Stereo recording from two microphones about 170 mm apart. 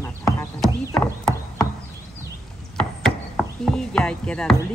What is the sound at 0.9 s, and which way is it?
Horse, 5° left (ahead or behind).